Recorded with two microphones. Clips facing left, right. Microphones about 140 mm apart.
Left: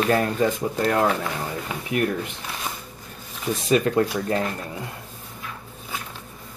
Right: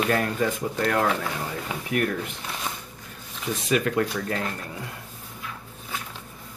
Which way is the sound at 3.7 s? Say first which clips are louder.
Left 4 dB; 30° left (ahead or behind).